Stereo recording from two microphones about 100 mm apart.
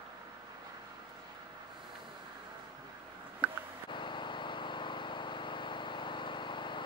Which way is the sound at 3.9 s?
55° left (ahead or behind).